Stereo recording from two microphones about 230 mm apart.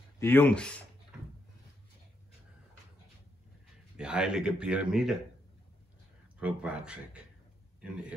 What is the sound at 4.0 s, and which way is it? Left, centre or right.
Speech, centre.